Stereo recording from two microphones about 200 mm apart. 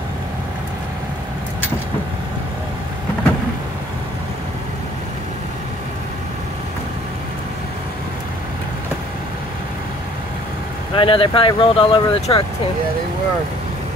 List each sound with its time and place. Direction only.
11.0 s speech: 25° left (ahead or behind)